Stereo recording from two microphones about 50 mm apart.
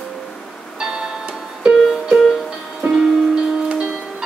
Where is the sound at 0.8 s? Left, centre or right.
Centre.